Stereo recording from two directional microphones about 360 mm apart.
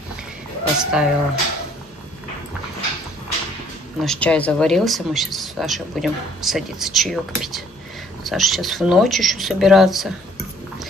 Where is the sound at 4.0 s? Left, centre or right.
Centre.